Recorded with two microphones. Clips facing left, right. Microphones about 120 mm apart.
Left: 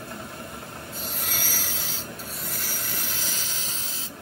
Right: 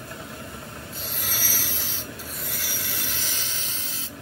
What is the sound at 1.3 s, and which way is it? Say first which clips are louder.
Vehicle: even; 35° left (ahead or behind).